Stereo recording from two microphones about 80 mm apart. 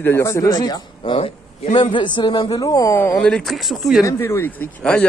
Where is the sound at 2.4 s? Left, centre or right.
Left.